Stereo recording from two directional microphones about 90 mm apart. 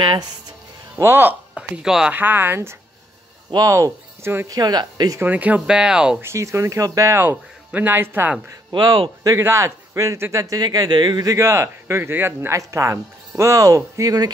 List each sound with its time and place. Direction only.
0.9 s speech: 25° right (ahead or behind)
1.5 s speech: 10° right (ahead or behind)
2.1 s speech: 20° right (ahead or behind)
3.5 s speech: 35° right (ahead or behind)
4.5 s speech: 45° right (ahead or behind)
5.2 s speech: 15° right (ahead or behind)
6.2 s speech: 30° right (ahead or behind)
7.2 s speech: 20° right (ahead or behind)
9.4 s speech: 30° right (ahead or behind); by 11.3 s 55° right (ahead or behind)
11.3 s speech: 35° right (ahead or behind)